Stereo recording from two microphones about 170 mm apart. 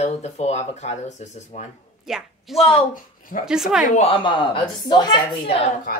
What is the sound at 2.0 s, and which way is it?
Speech, 5° right (ahead or behind).